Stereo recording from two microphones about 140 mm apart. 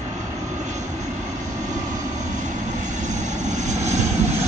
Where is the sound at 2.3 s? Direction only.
60° right (ahead or behind).